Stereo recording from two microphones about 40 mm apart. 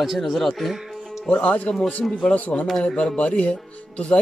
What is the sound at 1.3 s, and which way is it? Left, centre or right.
Speech, left.